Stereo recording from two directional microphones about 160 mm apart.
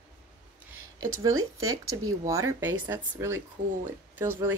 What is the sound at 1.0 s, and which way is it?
A woman's voice, 20° right (ahead or behind).